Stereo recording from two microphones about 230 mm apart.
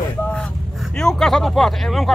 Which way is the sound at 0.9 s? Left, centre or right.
Centre.